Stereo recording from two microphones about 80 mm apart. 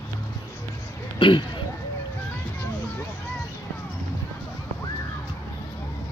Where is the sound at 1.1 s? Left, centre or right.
Left.